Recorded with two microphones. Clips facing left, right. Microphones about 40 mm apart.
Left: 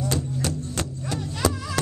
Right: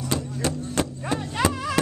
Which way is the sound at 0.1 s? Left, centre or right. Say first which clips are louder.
Right 1 dB; centre.